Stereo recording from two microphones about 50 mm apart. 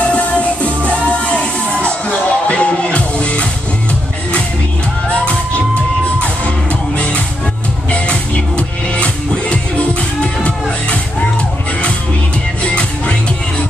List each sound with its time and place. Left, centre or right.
0.0 s music: left
7.9 s music: left
12.6 s music: left